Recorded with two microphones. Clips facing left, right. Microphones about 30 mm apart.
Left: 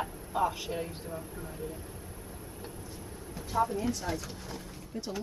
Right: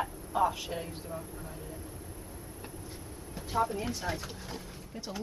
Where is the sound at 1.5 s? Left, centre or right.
Centre.